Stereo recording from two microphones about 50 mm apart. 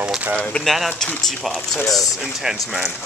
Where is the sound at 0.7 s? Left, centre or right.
Centre.